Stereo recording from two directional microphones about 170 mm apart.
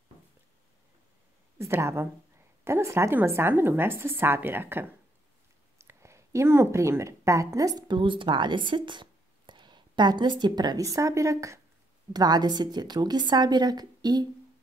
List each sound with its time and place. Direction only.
1.6 s a woman's voice: 15° right (ahead or behind)